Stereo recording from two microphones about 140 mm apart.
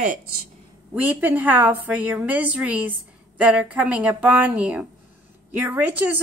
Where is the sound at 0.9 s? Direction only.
10° right (ahead or behind).